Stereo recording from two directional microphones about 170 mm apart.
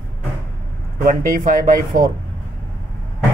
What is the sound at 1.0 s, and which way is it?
Speech, 55° right (ahead or behind).